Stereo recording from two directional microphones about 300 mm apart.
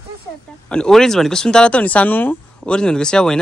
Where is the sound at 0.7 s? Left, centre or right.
Centre.